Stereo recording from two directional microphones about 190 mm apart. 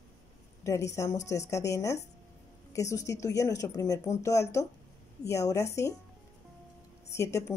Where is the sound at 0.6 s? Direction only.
15° left (ahead or behind).